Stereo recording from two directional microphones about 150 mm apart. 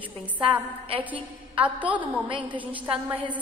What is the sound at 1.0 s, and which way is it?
A woman's voice, 10° right (ahead or behind).